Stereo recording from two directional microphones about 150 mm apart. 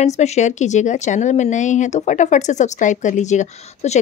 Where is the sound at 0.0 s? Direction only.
50° left (ahead or behind).